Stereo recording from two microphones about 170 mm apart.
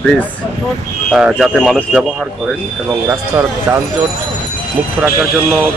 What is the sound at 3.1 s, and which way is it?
Speech, 20° right (ahead or behind).